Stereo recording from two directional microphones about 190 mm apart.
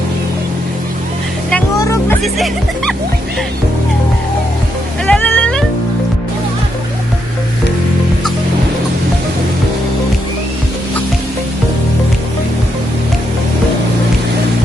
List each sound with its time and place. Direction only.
1.8 s music: 15° left (ahead or behind)
2.2 s speech: centre (ahead or behind)
5.0 s music: 5° left (ahead or behind)